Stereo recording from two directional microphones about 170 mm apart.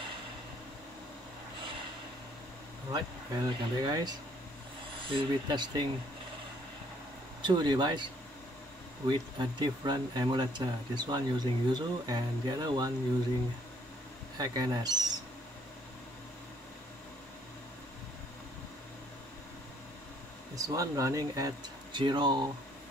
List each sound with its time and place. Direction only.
2.9 s speech: 25° right (ahead or behind)
7.4 s speech: 25° right (ahead or behind)
14.4 s speech: 25° right (ahead or behind)
20.5 s speech: 20° right (ahead or behind)